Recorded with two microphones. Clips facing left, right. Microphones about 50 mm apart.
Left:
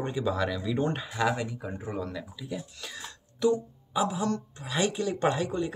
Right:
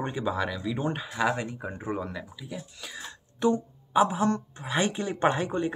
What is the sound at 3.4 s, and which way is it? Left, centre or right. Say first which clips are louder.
Speech: even; right.